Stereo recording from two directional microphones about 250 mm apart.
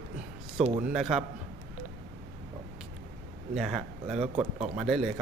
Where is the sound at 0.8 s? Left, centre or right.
Centre.